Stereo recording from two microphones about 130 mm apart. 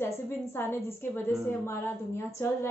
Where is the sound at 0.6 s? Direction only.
15° left (ahead or behind).